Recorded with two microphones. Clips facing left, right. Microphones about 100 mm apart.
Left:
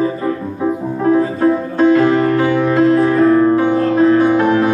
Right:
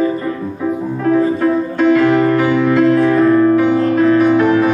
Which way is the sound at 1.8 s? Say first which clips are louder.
Even; 30° left (ahead or behind).